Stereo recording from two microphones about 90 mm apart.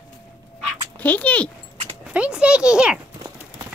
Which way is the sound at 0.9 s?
20° left (ahead or behind).